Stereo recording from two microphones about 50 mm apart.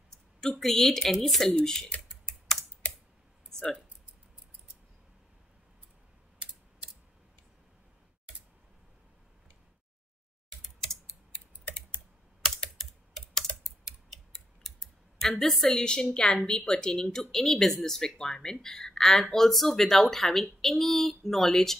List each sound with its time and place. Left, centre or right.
0.4 s speech: centre
2.0 s typing: centre
10.8 s a sound: centre
12.7 s computer keyboard: centre
14.7 s tick: centre
15.4 s speech: centre